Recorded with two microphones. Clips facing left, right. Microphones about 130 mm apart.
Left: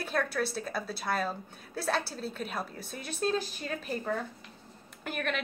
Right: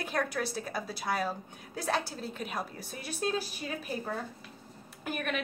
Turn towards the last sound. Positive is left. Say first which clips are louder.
# even
turn(degrees=-10)  # may be behind; listen again after turning